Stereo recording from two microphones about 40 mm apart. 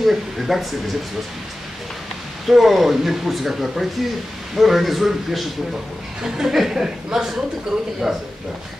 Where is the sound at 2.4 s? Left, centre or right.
Centre.